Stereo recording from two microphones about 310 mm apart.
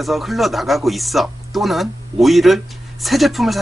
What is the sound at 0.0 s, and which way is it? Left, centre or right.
Speech, centre.